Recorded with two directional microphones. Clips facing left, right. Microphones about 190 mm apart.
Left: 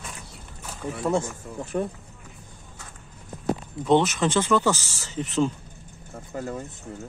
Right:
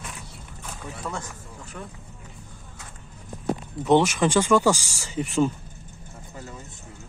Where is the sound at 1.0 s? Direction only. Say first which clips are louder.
Left 11 dB; 25° left (ahead or behind).